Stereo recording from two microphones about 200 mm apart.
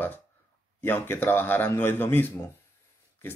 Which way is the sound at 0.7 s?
10° left (ahead or behind).